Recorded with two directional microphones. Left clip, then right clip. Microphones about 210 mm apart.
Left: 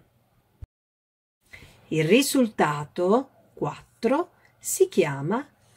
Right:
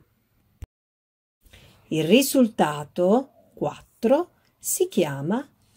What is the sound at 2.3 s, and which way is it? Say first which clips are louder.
Speech: right 2 dB; 30° right (ahead or behind).